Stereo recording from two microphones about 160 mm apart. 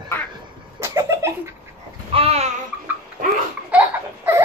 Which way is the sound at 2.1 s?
35° right (ahead or behind).